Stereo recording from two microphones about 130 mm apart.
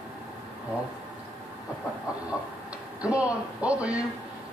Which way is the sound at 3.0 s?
10° right (ahead or behind).